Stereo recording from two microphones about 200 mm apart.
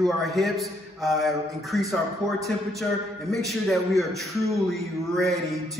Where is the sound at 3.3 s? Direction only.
Centre (ahead or behind).